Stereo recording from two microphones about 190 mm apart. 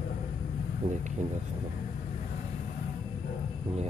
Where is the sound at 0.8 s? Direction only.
35° right (ahead or behind).